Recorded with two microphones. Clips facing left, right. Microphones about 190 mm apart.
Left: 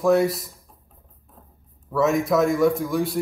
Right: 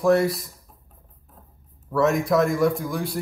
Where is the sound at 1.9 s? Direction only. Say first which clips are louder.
Even; centre (ahead or behind).